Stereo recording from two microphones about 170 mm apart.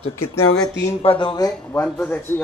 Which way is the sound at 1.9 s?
10° left (ahead or behind).